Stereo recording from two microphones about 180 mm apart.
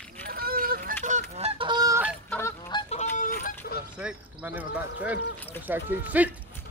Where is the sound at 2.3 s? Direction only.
15° left (ahead or behind).